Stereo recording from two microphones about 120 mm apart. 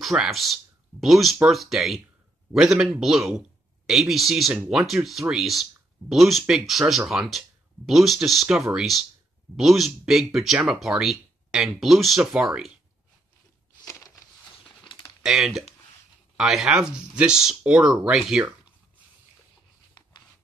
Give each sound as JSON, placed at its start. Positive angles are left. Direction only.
{"t": 0.0, "sound": "a man's voice", "side_deg": 0}
{"t": 13.8, "sound": "a sound", "side_deg": 25}
{"t": 15.0, "sound": "speech", "side_deg": 0}